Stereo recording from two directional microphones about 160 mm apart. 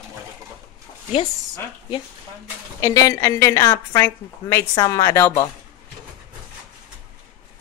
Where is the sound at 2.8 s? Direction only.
20° left (ahead or behind).